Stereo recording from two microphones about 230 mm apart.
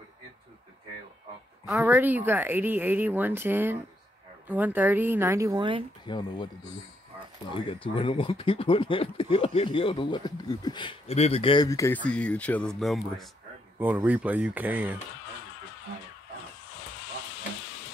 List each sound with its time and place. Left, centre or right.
1.8 s speech: centre
6.0 s speech: centre
7.5 s speech: left; by 15.0 s centre